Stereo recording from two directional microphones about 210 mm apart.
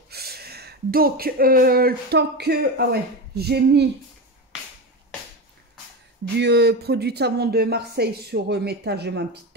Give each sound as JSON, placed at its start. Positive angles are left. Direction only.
{"t": 0.1, "sound": "speech", "side_deg": -50}
{"t": 6.3, "sound": "speech", "side_deg": -50}